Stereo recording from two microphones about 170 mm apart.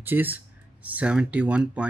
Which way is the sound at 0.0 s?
10° right (ahead or behind).